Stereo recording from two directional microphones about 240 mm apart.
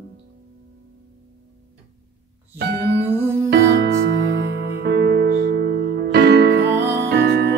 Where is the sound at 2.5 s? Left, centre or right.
Right.